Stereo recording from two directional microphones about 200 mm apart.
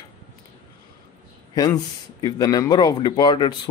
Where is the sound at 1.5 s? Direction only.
20° left (ahead or behind).